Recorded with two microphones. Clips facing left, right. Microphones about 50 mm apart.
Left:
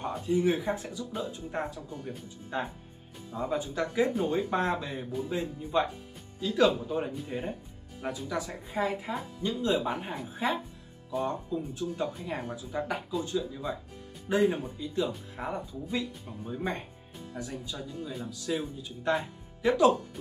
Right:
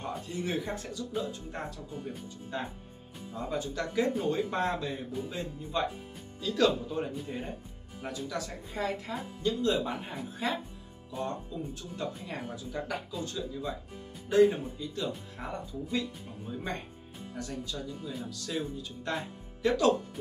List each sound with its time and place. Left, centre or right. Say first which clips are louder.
0.0 s speech: left 8 dB; centre